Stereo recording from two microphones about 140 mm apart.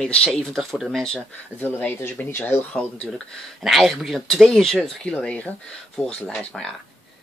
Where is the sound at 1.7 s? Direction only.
15° left (ahead or behind).